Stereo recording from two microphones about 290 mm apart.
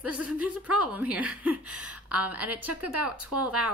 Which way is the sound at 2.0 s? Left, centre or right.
Centre.